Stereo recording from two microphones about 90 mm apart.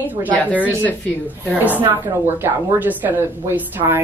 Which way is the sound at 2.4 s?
20° right (ahead or behind).